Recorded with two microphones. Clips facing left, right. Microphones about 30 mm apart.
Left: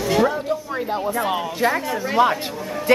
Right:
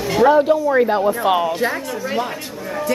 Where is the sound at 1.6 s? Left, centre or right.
Centre.